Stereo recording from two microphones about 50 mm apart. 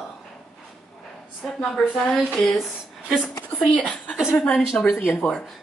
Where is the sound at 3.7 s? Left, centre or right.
Left.